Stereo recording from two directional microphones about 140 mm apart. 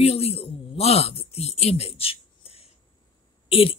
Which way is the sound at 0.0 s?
45° left (ahead or behind).